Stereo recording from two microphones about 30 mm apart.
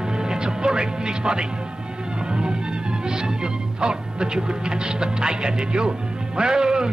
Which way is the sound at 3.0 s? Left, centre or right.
Right.